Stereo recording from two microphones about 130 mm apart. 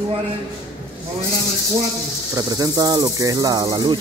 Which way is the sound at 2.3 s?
30° right (ahead or behind).